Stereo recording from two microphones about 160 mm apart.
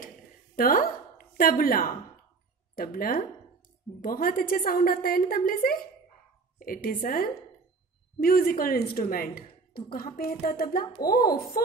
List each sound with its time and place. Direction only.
0.6 s a woman's voice: 65° left (ahead or behind)